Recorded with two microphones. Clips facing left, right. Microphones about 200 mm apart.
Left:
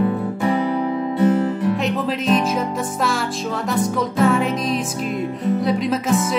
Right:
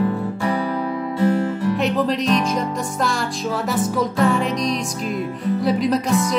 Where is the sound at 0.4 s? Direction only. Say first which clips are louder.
Left 4 dB; 20° left (ahead or behind).